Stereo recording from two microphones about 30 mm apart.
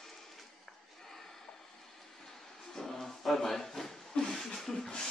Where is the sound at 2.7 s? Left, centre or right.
Centre.